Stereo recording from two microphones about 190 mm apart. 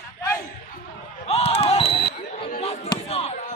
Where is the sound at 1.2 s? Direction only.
30° left (ahead or behind).